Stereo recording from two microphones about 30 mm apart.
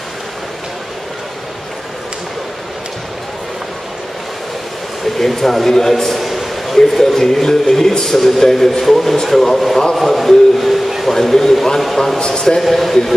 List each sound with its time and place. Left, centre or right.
5.2 s a man's voice: centre
6.1 s a sound: centre
7.4 s a man's voice: centre
9.9 s a man's voice: centre
12.2 s speech: left
12.6 s speech: centre